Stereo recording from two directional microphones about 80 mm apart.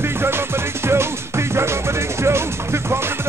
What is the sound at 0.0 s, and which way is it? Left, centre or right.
Music, right.